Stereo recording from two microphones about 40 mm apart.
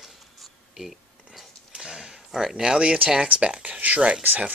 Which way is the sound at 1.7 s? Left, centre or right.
Centre.